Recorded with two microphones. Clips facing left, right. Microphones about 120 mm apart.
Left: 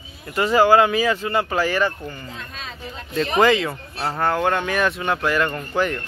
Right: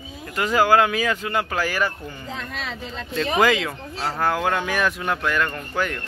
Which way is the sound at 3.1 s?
Centre (ahead or behind).